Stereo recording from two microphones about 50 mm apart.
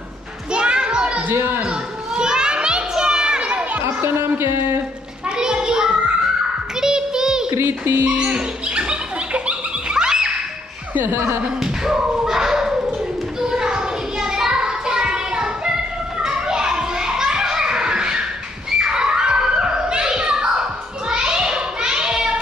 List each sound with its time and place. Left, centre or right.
0.5 s children playing: centre
1.3 s speech: right
1.6 s children playing: centre
3.8 s a sound: right
5.4 s child singing: centre
7.6 s speech: right
8.0 s dog: right
11.1 s speech: right
11.6 s music: centre
13.4 s child singing: centre
18.8 s a sound: centre